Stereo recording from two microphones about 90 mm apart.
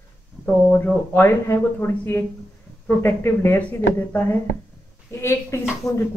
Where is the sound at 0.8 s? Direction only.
25° left (ahead or behind).